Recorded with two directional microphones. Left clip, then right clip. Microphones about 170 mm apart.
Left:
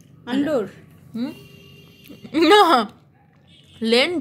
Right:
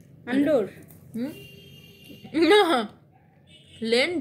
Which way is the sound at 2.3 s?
40° left (ahead or behind).